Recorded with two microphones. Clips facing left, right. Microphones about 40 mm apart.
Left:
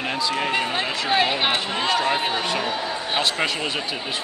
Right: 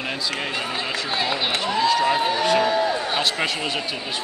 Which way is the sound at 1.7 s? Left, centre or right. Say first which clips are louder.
Right 2 dB; left.